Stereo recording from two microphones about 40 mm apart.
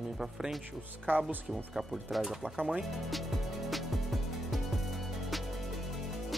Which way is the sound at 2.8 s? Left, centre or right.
Centre.